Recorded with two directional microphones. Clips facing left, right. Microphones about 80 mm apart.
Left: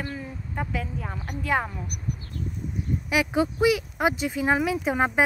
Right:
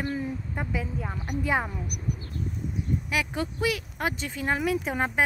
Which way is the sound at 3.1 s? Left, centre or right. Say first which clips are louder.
Left 9 dB; centre.